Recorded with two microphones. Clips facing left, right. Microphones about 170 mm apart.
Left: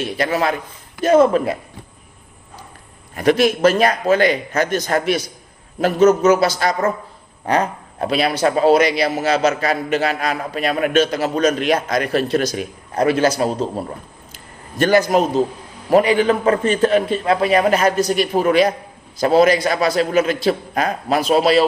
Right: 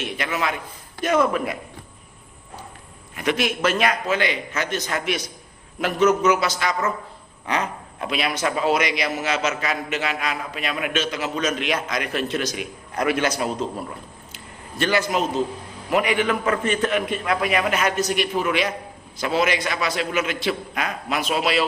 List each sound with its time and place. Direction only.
0.0 s a man's voice: 35° left (ahead or behind)
3.2 s a man's voice: 40° left (ahead or behind)
14.3 s a sound: 45° left (ahead or behind)
15.9 s a man's voice: 35° left (ahead or behind)